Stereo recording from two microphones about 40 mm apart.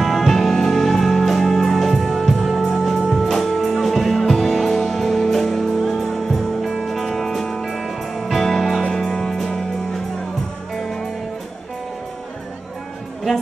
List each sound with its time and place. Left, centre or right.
0.0 s music: centre